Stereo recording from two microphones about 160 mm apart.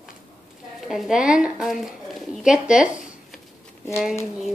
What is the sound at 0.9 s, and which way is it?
Speech, 5° right (ahead or behind).